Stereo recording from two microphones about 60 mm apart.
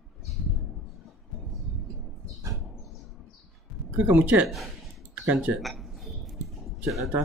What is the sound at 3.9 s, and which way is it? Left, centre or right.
Speech, right.